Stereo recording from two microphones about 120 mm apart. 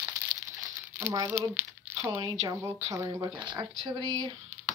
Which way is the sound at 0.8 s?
20° right (ahead or behind).